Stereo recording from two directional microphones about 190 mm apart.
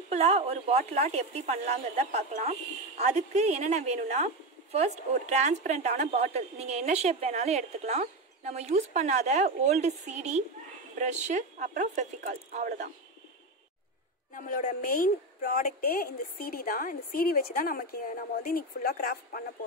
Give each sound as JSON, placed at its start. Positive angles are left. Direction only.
{"t": 0.1, "sound": "speech", "side_deg": -35}
{"t": 14.3, "sound": "a woman's voice", "side_deg": 45}